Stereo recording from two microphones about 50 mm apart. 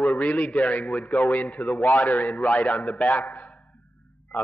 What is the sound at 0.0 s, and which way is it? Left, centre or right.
A man's voice, left.